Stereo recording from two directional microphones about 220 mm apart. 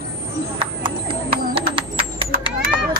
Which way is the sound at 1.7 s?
40° right (ahead or behind).